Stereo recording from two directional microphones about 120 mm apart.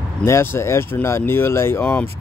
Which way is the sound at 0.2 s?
20° left (ahead or behind).